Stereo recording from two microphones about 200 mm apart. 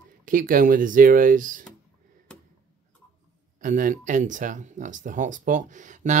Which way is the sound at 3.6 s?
40° right (ahead or behind).